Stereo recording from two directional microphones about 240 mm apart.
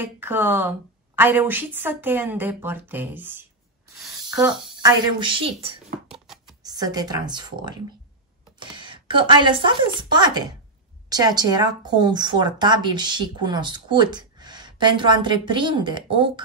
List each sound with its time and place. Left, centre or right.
0.0 s speech: centre
6.0 s a sound: centre
6.6 s speech: centre